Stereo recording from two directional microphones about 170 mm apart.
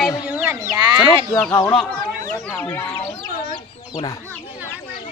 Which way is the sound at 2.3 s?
10° left (ahead or behind).